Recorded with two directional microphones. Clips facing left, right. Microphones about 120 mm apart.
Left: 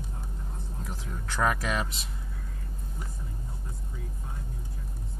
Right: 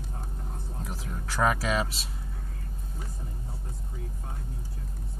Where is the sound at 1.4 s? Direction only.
20° right (ahead or behind).